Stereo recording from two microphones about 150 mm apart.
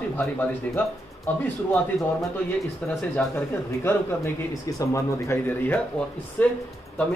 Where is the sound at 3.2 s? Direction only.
10° left (ahead or behind).